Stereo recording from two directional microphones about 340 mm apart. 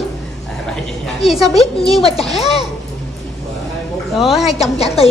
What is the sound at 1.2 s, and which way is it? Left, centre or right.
Speech, centre.